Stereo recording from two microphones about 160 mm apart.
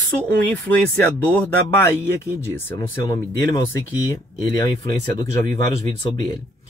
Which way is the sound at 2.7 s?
25° left (ahead or behind).